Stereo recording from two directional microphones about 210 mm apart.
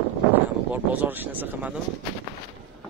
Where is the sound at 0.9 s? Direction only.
10° right (ahead or behind).